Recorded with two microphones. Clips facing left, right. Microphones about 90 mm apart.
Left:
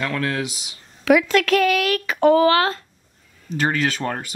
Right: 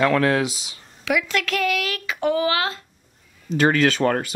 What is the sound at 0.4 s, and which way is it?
Speech, 40° right (ahead or behind).